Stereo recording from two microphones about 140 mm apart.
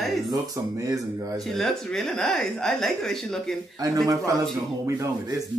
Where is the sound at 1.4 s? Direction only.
Centre (ahead or behind).